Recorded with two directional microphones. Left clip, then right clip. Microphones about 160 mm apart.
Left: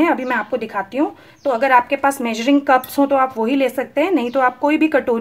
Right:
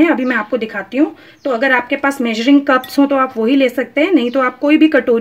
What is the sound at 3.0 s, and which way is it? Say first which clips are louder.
A woman's voice: right 2 dB; 20° right (ahead or behind).